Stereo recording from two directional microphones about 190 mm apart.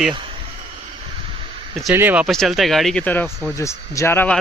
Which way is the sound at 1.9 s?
10° right (ahead or behind).